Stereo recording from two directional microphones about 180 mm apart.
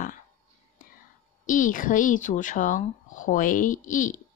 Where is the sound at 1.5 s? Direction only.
45° left (ahead or behind).